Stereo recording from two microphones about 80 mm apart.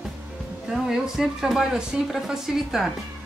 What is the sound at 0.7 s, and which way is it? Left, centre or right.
Speech, centre.